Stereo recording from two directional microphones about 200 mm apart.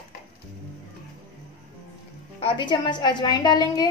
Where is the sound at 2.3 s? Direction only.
25° left (ahead or behind).